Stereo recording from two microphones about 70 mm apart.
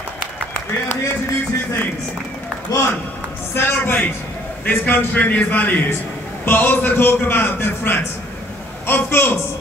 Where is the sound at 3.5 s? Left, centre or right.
Left.